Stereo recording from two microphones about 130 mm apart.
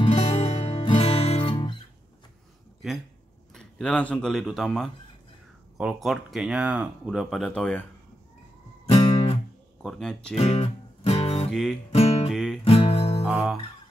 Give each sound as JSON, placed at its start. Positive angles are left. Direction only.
{"t": 0.1, "sound": "music", "side_deg": 55}
{"t": 3.5, "sound": "speech", "side_deg": 5}
{"t": 8.8, "sound": "music", "side_deg": 45}
{"t": 9.8, "sound": "speech", "side_deg": 0}
{"t": 10.3, "sound": "music", "side_deg": 55}
{"t": 11.9, "sound": "guitar", "side_deg": 50}
{"t": 12.3, "sound": "music", "side_deg": 5}
{"t": 12.6, "sound": "music", "side_deg": 50}
{"t": 13.3, "sound": "speech", "side_deg": -5}